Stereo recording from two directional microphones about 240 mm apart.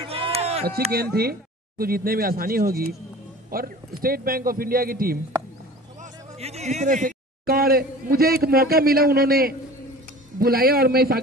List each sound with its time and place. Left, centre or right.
0.0 s a sound: right
1.1 s a man's voice: right
6.3 s a man's voice: right